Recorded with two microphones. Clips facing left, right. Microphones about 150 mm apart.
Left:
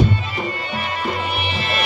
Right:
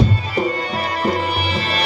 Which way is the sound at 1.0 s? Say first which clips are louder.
Right 5 dB; 40° right (ahead or behind).